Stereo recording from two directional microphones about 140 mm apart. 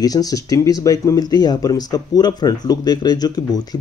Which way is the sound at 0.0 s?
25° left (ahead or behind).